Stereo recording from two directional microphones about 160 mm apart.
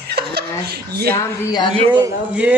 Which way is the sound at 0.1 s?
90° right.